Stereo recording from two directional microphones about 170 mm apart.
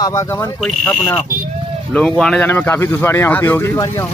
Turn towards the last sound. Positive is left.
turn(degrees=15)  # may be behind; listen again after turning